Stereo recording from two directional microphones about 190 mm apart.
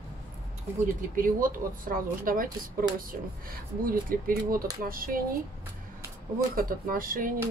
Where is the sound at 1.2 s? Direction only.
45° right (ahead or behind).